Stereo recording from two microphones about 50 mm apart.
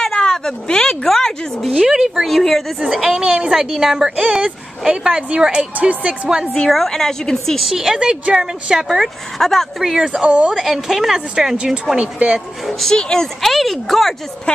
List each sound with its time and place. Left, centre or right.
0.0 s a sound: centre
1.0 s a woman's voice: centre
1.9 s speech: centre
2.2 s speech: centre
2.9 s speech: centre; by 6.1 s right
6.5 s a woman's voice: centre
7.6 s speech: centre
9.4 s a woman's voice: centre
9.8 s speech: centre
10.2 s speech: right
10.6 s speech: centre
12.8 s speech: centre